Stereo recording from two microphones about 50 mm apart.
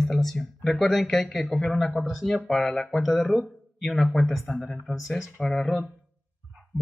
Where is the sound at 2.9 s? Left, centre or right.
Centre.